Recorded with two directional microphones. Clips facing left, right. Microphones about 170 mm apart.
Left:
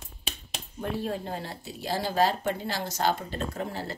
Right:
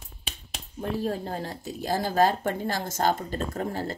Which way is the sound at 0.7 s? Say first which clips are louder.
Right 2 dB; 40° right (ahead or behind).